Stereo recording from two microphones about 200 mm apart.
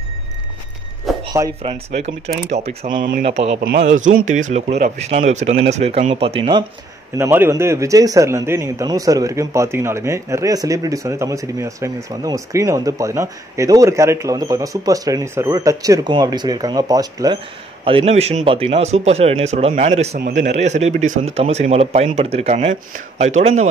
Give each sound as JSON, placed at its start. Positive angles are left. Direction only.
{"t": 1.1, "sound": "a sound", "side_deg": 0}
{"t": 1.6, "sound": "a man's voice", "side_deg": -30}
{"t": 3.0, "sound": "speech", "side_deg": -45}
{"t": 3.3, "sound": "a man's voice", "side_deg": -30}
{"t": 7.2, "sound": "speech", "side_deg": -10}
{"t": 17.8, "sound": "a man's voice", "side_deg": -30}
{"t": 20.2, "sound": "a man's voice", "side_deg": -45}